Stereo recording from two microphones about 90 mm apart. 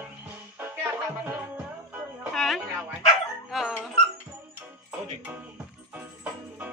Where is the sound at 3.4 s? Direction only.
5° right (ahead or behind).